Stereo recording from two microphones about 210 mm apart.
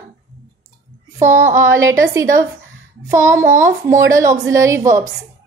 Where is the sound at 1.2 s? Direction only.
35° right (ahead or behind).